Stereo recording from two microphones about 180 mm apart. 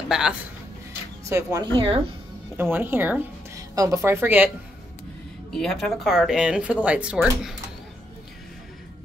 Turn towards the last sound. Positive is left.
turn(degrees=0)  # may be behind; listen again after turning